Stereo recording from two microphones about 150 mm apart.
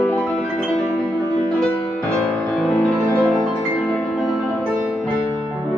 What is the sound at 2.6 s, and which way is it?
Music, 5° left (ahead or behind).